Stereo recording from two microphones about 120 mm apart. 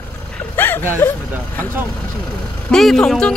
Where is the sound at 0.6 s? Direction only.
20° left (ahead or behind).